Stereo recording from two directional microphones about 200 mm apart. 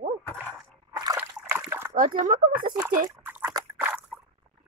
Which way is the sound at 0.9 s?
20° right (ahead or behind).